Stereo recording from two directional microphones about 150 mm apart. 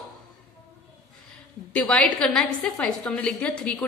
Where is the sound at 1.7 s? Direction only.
10° left (ahead or behind).